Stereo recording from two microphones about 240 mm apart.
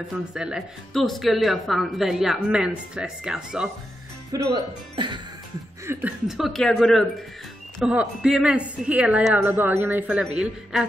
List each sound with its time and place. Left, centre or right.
0.3 s a woman's voice: centre
4.3 s speech: centre
5.9 s a woman's voice: centre